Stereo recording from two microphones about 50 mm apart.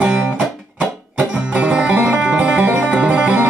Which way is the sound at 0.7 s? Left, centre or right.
Right.